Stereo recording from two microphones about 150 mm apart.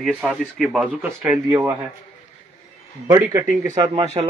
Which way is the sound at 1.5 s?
15° right (ahead or behind).